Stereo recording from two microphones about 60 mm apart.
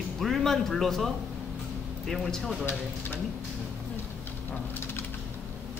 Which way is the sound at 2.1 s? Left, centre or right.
Centre.